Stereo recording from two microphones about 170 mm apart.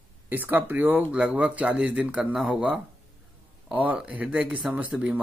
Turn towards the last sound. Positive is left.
turn(degrees=-10)  # may be behind; listen again after turning